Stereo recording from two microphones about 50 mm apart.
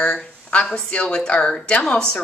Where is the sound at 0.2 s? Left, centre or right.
Left.